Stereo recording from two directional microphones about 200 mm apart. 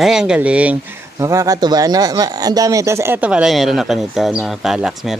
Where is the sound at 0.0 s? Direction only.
5° right (ahead or behind).